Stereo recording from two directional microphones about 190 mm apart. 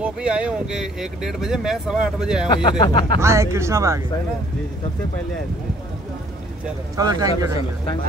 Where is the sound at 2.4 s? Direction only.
25° left (ahead or behind).